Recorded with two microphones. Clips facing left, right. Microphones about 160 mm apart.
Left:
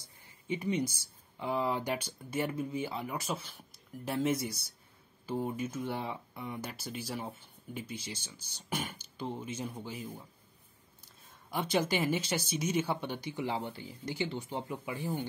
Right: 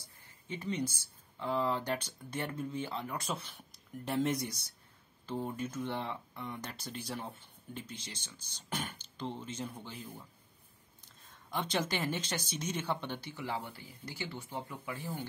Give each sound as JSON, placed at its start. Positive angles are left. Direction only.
{"t": 0.5, "sound": "speech", "side_deg": 15}
{"t": 11.5, "sound": "speech", "side_deg": 10}